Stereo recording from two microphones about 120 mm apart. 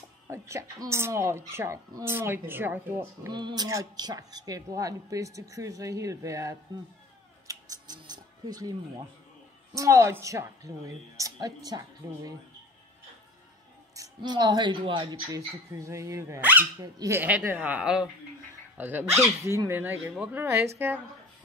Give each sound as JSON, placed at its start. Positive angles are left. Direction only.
{"t": 0.3, "sound": "a woman's voice", "side_deg": -25}
{"t": 3.3, "sound": "a woman's voice", "side_deg": -35}
{"t": 7.4, "sound": "scissors", "side_deg": -30}
{"t": 9.8, "sound": "a woman's voice", "side_deg": -25}
{"t": 13.9, "sound": "a woman's voice", "side_deg": -35}
{"t": 15.7, "sound": "a woman's voice", "side_deg": -25}
{"t": 16.8, "sound": "a woman's voice", "side_deg": -30}
{"t": 17.2, "sound": "speech", "side_deg": -15}